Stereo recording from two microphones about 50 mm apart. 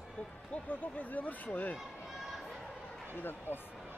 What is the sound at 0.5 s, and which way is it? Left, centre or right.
Speech, left.